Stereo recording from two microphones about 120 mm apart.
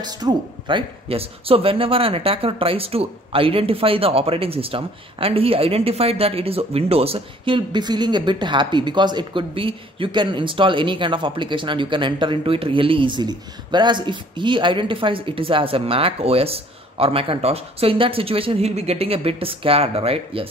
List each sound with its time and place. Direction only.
0.0 s speech: 35° right (ahead or behind); by 20.4 s 55° right (ahead or behind)